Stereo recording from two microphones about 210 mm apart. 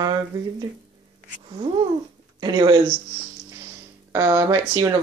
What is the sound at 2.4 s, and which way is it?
Speech, 20° right (ahead or behind).